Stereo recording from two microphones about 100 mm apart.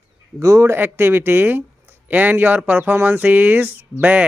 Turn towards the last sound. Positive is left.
turn(degrees=-15)  # may be behind; listen again after turning